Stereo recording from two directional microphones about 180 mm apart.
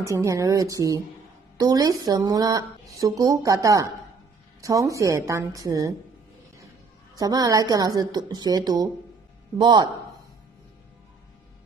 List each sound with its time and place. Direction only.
0.0 s a woman's voice: 15° right (ahead or behind)
7.2 s speech: 20° right (ahead or behind)